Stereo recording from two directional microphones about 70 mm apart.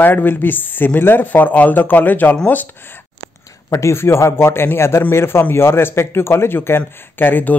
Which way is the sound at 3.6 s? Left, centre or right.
Left.